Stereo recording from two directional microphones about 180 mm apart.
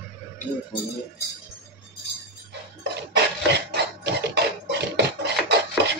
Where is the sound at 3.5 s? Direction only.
70° right (ahead or behind).